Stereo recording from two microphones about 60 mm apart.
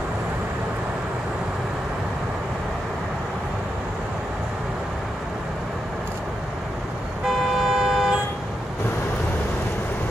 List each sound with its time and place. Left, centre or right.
7.2 s vehicle: centre